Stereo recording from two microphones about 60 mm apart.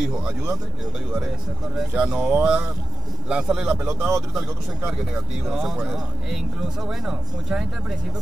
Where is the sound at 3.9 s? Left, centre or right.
Centre.